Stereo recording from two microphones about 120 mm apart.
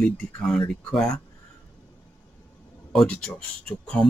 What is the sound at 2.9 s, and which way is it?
Speech, 5° left (ahead or behind).